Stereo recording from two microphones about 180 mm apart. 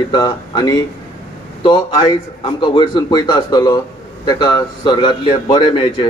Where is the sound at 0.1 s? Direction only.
25° left (ahead or behind).